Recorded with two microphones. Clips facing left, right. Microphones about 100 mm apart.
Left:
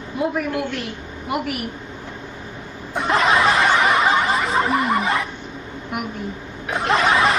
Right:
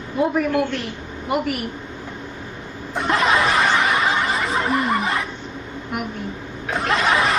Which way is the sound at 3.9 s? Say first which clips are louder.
Left 3 dB; 30° left (ahead or behind).